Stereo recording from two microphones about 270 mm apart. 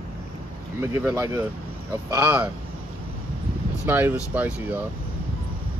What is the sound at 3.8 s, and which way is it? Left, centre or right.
Speech, centre.